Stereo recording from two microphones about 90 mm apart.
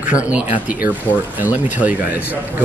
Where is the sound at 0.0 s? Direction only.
15° right (ahead or behind).